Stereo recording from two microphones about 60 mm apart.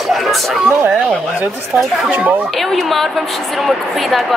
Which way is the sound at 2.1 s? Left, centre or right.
Right.